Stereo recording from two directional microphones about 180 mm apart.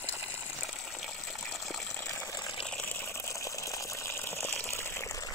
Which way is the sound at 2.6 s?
10° left (ahead or behind).